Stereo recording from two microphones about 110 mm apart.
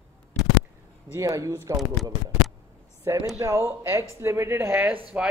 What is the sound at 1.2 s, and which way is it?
Speech, 30° right (ahead or behind).